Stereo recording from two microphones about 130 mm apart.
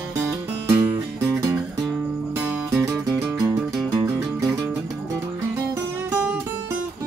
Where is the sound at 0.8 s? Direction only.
20° right (ahead or behind).